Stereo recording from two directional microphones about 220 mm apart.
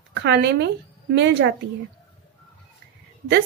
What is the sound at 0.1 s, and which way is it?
A woman's voice, 50° right (ahead or behind).